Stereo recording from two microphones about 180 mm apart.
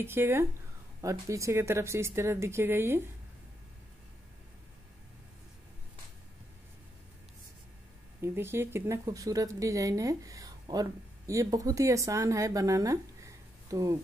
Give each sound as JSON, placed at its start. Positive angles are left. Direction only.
{"t": 0.0, "sound": "speech", "side_deg": -15}
{"t": 8.2, "sound": "a woman's voice", "side_deg": -15}